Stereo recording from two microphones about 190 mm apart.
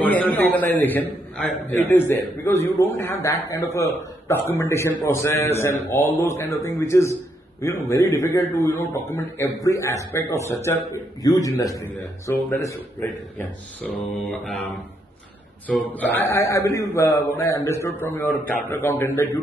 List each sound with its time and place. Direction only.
0.0 s a sound: 10° left (ahead or behind)
0.7 s speech: 10° left (ahead or behind)
15.6 s speech: 10° left (ahead or behind)